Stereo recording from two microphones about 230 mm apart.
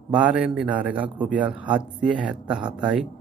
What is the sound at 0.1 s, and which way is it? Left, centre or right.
Speech, centre.